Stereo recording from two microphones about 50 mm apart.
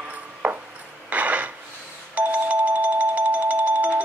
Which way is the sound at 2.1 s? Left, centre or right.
Right.